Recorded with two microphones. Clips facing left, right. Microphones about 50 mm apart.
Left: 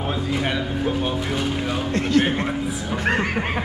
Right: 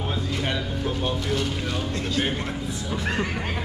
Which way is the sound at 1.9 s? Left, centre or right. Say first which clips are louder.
Left 9 dB; left.